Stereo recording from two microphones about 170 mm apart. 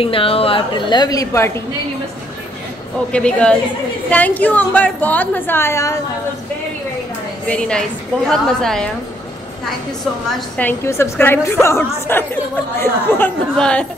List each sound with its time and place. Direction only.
0.0 s a woman's voice: 35° left (ahead or behind); by 1.6 s 15° left (ahead or behind)
3.1 s a woman's voice: 5° left (ahead or behind)
7.4 s a woman's voice: 5° left (ahead or behind)
10.6 s a woman's voice: 15° left (ahead or behind)